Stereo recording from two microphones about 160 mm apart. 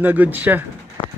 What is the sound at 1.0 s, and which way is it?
Clip-clop, 35° left (ahead or behind).